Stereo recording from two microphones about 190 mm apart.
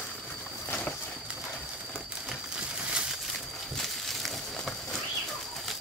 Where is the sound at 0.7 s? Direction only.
10° left (ahead or behind).